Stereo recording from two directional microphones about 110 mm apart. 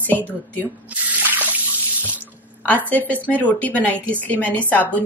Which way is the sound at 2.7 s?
15° left (ahead or behind).